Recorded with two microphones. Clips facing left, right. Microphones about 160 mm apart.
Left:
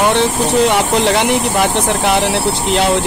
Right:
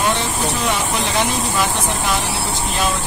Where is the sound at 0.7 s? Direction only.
70° left (ahead or behind).